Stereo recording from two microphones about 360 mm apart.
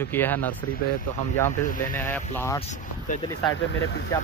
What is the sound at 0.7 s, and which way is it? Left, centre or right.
Speech, left.